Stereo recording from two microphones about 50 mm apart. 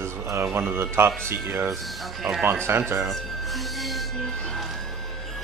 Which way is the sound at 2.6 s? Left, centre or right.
Right.